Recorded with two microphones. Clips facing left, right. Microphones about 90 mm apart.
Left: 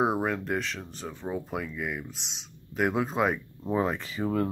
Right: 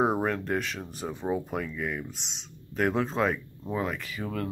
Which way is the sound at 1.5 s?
5° left (ahead or behind).